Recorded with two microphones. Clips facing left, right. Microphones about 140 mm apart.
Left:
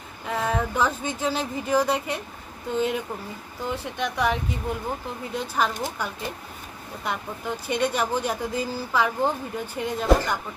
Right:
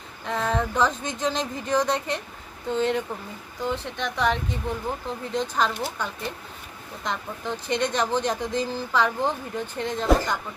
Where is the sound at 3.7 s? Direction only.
10° left (ahead or behind).